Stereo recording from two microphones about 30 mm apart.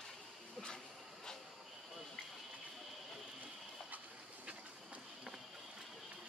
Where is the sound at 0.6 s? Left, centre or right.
Left.